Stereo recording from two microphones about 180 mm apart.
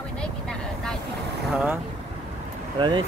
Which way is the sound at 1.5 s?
5° right (ahead or behind).